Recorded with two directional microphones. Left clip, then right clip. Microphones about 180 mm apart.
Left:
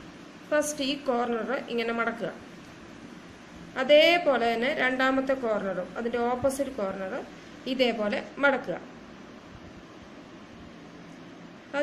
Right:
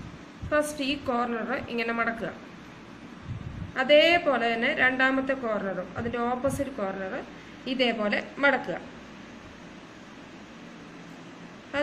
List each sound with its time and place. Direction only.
0.5 s a woman's voice: 15° left (ahead or behind)
3.7 s a woman's voice: 15° left (ahead or behind)
11.7 s speech: 20° left (ahead or behind)